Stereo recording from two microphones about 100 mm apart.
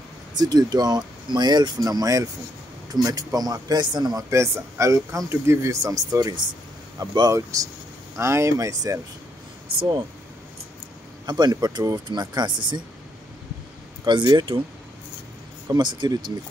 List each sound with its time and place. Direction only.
0.4 s speech: 45° right (ahead or behind)
11.2 s speech: 45° right (ahead or behind)
14.0 s speech: 50° right (ahead or behind)
15.7 s speech: 45° right (ahead or behind)